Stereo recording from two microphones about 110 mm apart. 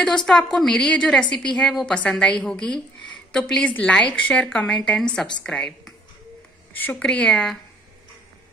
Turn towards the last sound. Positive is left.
turn(degrees=10)  # may be behind; listen again after turning